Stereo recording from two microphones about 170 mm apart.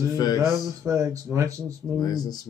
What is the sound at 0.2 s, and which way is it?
Speech, 20° left (ahead or behind).